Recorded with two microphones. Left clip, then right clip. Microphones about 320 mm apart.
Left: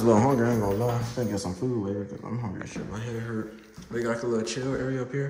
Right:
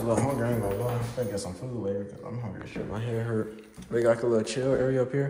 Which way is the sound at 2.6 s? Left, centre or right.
Centre.